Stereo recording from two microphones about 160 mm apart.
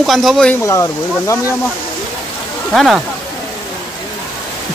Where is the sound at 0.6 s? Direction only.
20° left (ahead or behind).